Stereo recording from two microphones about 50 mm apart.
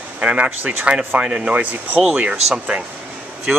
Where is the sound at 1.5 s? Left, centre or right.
Right.